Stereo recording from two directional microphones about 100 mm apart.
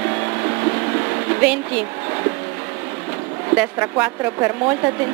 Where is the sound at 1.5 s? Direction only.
15° right (ahead or behind).